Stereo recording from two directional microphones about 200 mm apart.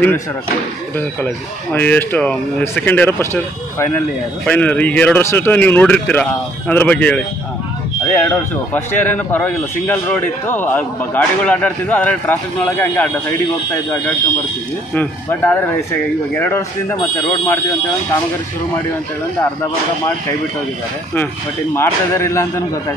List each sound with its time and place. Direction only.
0.9 s speech: 10° left (ahead or behind)
4.5 s speech: 5° left (ahead or behind)
15.0 s speech: 10° left (ahead or behind)
21.7 s speech: 10° left (ahead or behind)